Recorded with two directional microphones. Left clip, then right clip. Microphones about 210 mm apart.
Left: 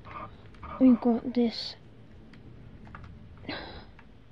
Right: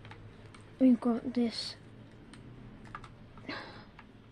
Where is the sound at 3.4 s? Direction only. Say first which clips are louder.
Left 4 dB; 20° left (ahead or behind).